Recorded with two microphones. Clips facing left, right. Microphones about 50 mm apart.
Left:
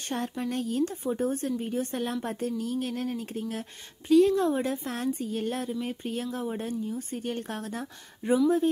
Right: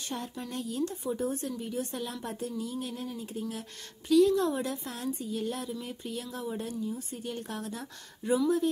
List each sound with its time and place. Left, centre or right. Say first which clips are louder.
0.0 s a woman's voice: left 6 dB; left
4.1 s a woman's voice: left 2 dB; left